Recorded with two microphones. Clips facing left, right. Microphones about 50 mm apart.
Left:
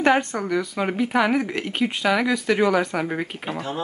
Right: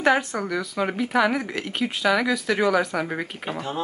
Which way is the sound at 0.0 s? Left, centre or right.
Centre.